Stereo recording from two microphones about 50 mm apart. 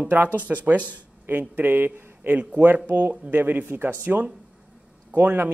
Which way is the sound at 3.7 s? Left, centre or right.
Right.